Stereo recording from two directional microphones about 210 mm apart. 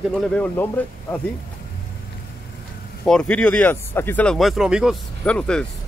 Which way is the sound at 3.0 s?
5° left (ahead or behind).